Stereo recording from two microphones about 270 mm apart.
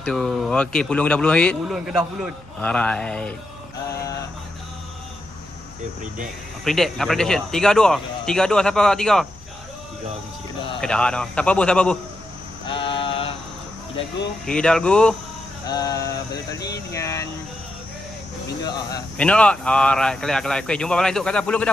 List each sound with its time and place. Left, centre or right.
0.0 s speech: centre
6.6 s speech: centre
10.8 s speech: centre
12.6 s mantra: centre
14.4 s speech: centre
15.6 s a sound: centre
18.6 s speech: centre